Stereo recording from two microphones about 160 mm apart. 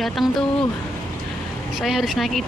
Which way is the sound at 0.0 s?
Centre (ahead or behind).